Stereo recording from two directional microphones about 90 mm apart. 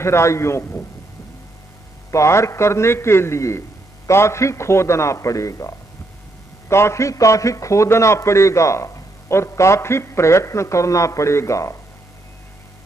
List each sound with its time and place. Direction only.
0.0 s a man's voice: 30° left (ahead or behind)
2.0 s a man's voice: 30° left (ahead or behind)